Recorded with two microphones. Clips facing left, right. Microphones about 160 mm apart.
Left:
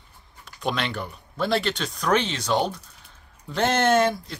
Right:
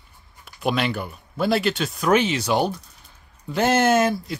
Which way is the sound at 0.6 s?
5° right (ahead or behind).